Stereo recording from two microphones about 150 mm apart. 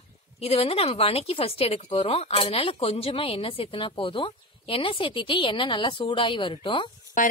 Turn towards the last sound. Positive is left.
turn(degrees=60)  # may be behind; listen again after turning